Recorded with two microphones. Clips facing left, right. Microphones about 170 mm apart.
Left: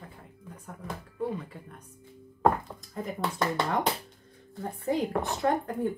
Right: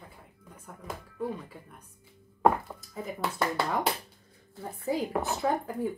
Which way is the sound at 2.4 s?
5° right (ahead or behind).